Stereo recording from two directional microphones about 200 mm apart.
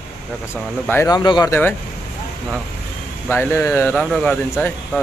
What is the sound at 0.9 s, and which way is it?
Speech, 15° left (ahead or behind).